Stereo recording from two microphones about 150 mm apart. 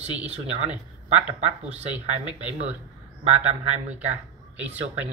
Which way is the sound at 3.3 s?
45° right (ahead or behind).